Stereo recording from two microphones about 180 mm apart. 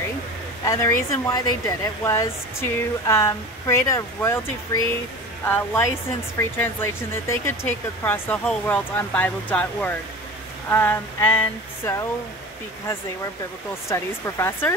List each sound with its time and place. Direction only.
0.7 s speech: 15° left (ahead or behind)
13.8 s speech: 15° left (ahead or behind)